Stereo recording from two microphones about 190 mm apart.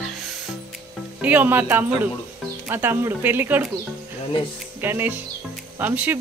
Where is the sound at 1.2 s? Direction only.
10° right (ahead or behind).